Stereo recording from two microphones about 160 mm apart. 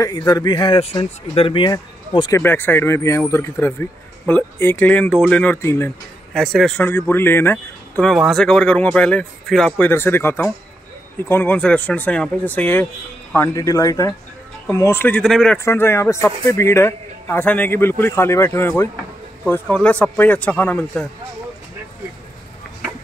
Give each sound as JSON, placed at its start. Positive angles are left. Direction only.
{"t": 0.3, "sound": "speech", "side_deg": 25}
{"t": 2.3, "sound": "a man's voice", "side_deg": 10}
{"t": 6.3, "sound": "a man's voice", "side_deg": 0}
{"t": 8.1, "sound": "speech", "side_deg": 0}
{"t": 9.8, "sound": "a man's voice", "side_deg": 15}
{"t": 15.5, "sound": "a man's voice", "side_deg": 15}